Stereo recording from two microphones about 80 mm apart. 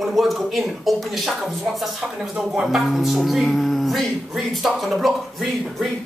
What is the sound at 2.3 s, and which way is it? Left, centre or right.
Speech, centre.